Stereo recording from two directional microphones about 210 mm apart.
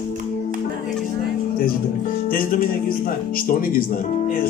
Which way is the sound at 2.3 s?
45° left (ahead or behind).